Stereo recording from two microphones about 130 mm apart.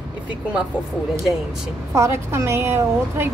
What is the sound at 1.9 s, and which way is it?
A woman's voice, 20° right (ahead or behind).